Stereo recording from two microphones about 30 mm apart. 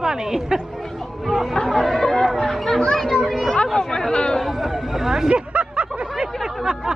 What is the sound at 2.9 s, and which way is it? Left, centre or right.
Children playing, centre.